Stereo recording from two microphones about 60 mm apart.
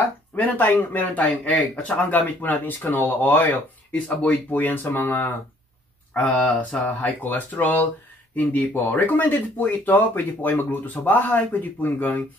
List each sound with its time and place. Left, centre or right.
0.4 s speech: left